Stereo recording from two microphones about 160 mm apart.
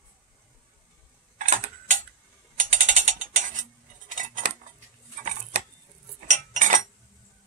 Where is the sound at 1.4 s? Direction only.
55° right (ahead or behind).